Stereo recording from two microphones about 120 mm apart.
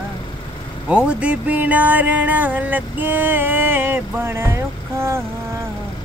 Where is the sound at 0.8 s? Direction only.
10° right (ahead or behind).